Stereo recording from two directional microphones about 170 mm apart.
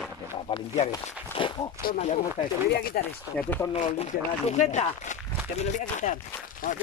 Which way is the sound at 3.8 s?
40° left (ahead or behind).